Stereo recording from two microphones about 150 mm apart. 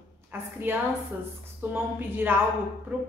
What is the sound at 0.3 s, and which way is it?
A woman's voice, 15° right (ahead or behind).